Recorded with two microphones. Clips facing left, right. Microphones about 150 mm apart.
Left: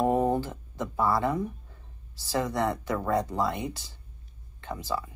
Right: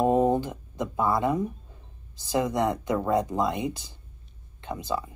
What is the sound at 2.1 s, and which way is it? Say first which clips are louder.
Speech: right 3 dB; 20° right (ahead or behind).